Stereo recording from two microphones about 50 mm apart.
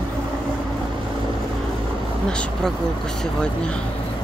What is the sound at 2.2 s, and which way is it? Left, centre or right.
Speech, left.